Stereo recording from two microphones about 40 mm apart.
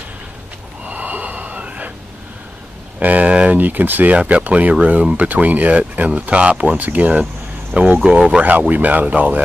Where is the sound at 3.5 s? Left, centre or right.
Right.